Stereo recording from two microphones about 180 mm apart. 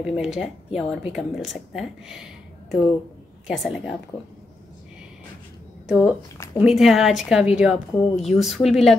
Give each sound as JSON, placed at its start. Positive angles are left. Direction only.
{"t": 0.0, "sound": "speech", "side_deg": -5}
{"t": 5.9, "sound": "speech", "side_deg": -5}
{"t": 6.3, "sound": "speech", "side_deg": 15}
{"t": 6.6, "sound": "speech", "side_deg": 0}